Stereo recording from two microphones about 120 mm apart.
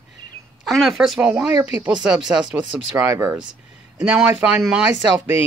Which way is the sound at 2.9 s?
20° right (ahead or behind).